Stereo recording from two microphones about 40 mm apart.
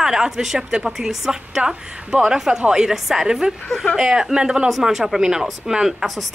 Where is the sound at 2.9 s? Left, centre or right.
Centre.